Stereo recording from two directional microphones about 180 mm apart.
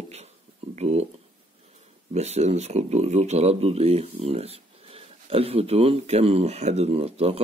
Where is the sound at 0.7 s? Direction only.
35° right (ahead or behind).